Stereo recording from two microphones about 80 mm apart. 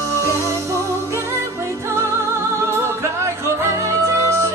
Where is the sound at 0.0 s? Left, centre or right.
Right.